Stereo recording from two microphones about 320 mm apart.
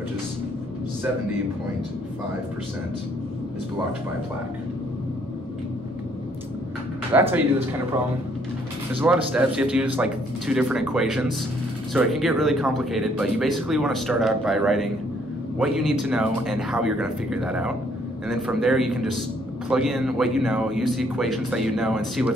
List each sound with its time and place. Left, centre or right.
7.1 s speech: centre
8.9 s speech: centre